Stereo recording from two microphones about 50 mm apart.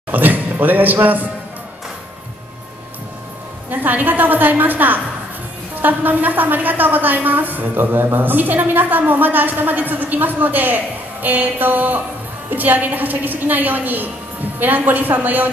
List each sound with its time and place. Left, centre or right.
0.1 s speech: right
3.7 s a woman's voice: right